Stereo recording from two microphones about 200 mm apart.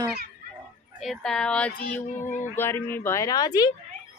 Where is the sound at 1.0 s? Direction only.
Centre (ahead or behind); by 3.7 s 20° left (ahead or behind).